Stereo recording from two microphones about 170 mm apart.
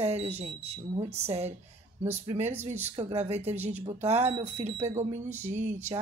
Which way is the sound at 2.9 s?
40° right (ahead or behind).